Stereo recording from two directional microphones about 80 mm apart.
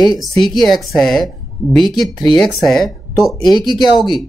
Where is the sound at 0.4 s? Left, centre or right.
Centre.